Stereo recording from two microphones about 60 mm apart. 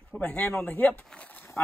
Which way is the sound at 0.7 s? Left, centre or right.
Left.